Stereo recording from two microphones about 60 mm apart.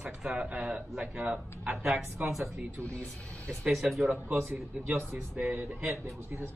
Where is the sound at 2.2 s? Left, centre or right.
Right.